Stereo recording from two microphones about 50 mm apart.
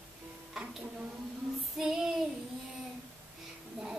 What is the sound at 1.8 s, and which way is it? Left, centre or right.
Child singing, centre.